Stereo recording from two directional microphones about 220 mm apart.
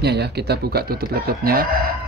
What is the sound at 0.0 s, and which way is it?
Speech, 50° right (ahead or behind).